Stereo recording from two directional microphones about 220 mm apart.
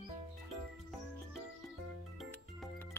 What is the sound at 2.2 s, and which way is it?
Music, centre (ahead or behind).